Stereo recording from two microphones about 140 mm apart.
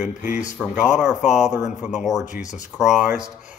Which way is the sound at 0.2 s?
15° right (ahead or behind).